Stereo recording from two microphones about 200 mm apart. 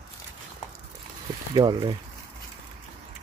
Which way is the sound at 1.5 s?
20° right (ahead or behind).